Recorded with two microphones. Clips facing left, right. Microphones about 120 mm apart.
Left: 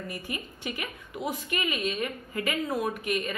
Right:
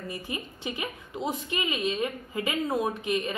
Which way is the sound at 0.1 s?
25° right (ahead or behind).